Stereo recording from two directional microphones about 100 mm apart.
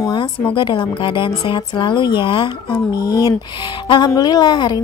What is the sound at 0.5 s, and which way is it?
Speech, 55° left (ahead or behind).